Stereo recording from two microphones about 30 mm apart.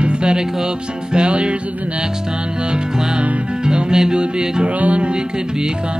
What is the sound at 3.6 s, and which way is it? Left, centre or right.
Music, right.